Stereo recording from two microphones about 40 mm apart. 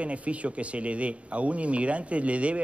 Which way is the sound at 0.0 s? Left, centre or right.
Right.